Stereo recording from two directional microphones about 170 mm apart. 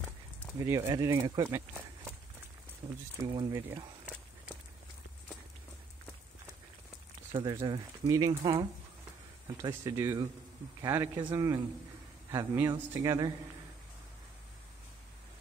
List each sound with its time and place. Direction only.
0.6 s speech: 20° right (ahead or behind)
2.8 s speech: 15° right (ahead or behind)
7.5 s speech: 20° right (ahead or behind)
9.6 s speech: 20° right (ahead or behind)